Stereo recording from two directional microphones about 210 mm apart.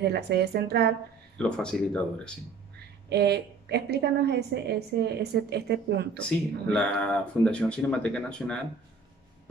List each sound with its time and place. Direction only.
0.0 s a woman's voice: 50° right (ahead or behind)
1.4 s speech: 5° left (ahead or behind)
3.1 s a woman's voice: 50° right (ahead or behind)
6.2 s speech: 5° left (ahead or behind)